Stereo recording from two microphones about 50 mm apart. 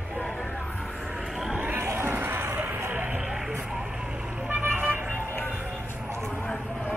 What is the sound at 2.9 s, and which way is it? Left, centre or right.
Music, right.